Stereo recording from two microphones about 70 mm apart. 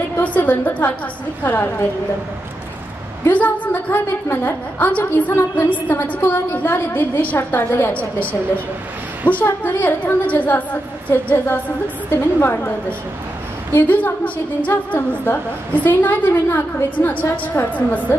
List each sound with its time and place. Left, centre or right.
0.2 s a woman's voice: left
3.3 s a woman's voice: left
7.9 s a woman's voice: left
9.5 s a woman's voice: left
13.8 s a woman's voice: left